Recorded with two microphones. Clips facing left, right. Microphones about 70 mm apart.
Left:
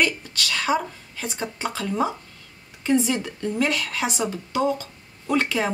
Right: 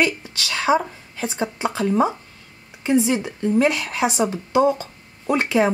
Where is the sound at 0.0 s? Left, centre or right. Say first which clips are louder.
Right 2 dB; centre.